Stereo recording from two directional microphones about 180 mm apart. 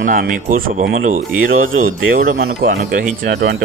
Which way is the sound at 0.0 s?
50° right (ahead or behind).